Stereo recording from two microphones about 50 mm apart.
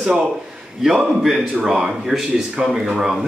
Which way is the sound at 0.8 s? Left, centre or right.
Centre.